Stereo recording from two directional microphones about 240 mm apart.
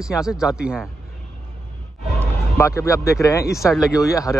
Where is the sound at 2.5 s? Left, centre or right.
Centre.